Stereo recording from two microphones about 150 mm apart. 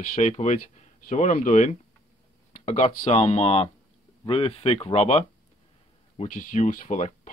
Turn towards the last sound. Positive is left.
turn(degrees=55)  # may be behind; listen again after turning